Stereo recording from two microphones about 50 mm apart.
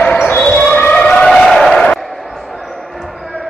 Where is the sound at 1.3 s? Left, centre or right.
Centre.